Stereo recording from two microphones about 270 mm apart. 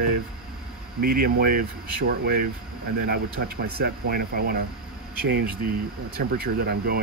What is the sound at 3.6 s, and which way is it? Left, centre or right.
Speech, right.